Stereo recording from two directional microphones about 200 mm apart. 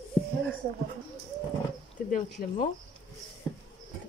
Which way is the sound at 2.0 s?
40° left (ahead or behind).